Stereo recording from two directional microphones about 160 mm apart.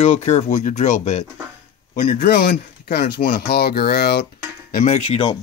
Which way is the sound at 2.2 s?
85° left.